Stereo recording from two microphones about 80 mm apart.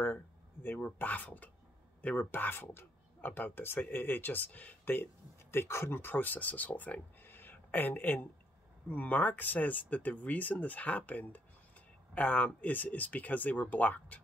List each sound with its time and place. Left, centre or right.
0.0 s speech: left